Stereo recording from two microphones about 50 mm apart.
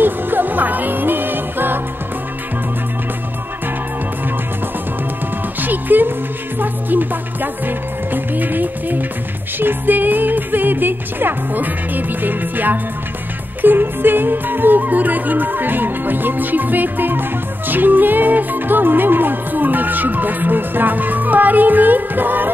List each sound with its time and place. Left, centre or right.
0.0 s music: right
5.6 s music: right